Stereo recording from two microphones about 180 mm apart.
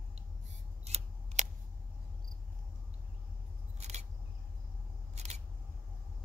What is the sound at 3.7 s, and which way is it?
Single-lens reflex camera, 40° right (ahead or behind).